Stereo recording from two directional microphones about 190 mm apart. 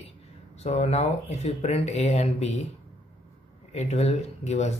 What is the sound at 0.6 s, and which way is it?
Speech, 35° left (ahead or behind).